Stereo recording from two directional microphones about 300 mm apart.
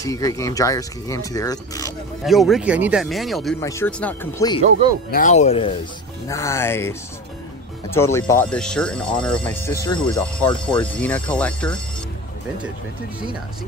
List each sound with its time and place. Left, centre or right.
0.0 s speech: centre
2.2 s speech: centre
5.1 s speech: left
6.2 s speech: centre